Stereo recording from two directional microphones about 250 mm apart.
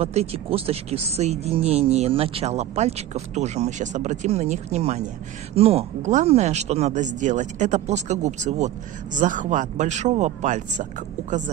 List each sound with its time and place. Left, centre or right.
0.0 s speech: right